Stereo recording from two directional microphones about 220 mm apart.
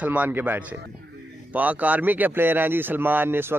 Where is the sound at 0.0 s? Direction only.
5° right (ahead or behind).